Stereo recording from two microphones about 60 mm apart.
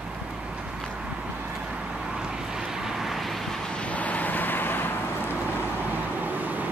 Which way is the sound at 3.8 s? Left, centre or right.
Left.